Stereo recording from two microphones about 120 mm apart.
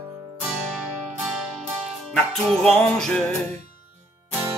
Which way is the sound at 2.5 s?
5° left (ahead or behind).